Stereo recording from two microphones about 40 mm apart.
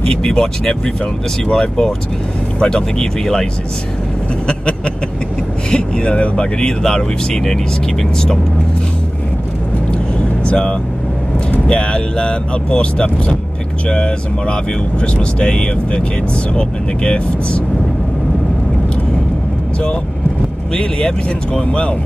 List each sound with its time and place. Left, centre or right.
0.1 s speech: centre
4.5 s speech: left
10.1 s vehicle: left
11.6 s speech: left
21.5 s speech: left